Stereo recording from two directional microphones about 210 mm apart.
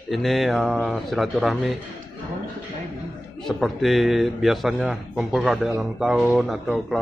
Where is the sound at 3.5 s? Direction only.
Centre (ahead or behind).